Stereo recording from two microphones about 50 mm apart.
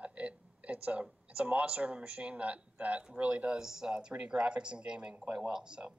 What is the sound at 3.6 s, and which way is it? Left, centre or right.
Speech, centre.